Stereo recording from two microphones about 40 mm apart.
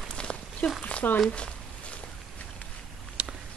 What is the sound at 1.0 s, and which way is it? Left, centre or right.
Speech, left.